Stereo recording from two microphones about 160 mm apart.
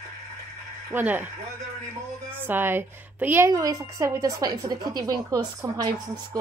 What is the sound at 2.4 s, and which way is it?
A woman's voice, 15° right (ahead or behind).